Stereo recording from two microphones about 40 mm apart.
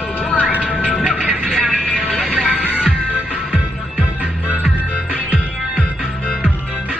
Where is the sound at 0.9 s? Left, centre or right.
Right.